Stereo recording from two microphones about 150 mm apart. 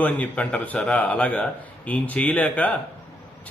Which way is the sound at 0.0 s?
10° left (ahead or behind).